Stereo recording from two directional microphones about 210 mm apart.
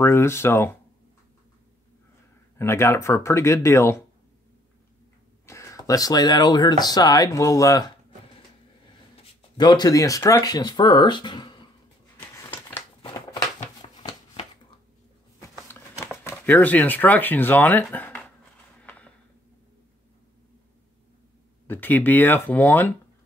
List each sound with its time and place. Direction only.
0.0 s speech: 10° left (ahead or behind)
2.6 s speech: 15° left (ahead or behind)
5.5 s speech: 15° left (ahead or behind)
9.1 s speech: 20° left (ahead or behind)
12.2 s a sound: 10° left (ahead or behind)
13.0 s a sound: 25° left (ahead or behind)
16.3 s speech: 10° left (ahead or behind)
18.8 s a sound: 5° left (ahead or behind)
21.6 s speech: 10° left (ahead or behind)